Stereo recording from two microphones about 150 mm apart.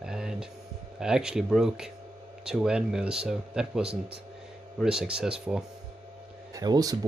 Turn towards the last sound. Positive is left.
turn(degrees=-25)  # may be behind; listen again after turning